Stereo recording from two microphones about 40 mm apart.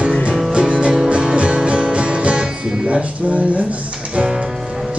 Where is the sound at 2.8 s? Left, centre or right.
Right.